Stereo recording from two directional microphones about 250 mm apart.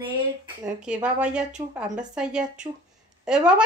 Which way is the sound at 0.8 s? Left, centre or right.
Centre.